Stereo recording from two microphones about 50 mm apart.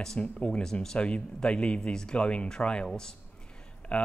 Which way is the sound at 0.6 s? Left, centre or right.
Centre.